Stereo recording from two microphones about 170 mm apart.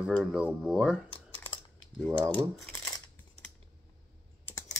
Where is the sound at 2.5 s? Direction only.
10° left (ahead or behind).